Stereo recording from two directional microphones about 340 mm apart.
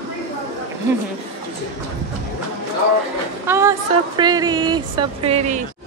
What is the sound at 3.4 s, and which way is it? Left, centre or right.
A woman's voice, centre.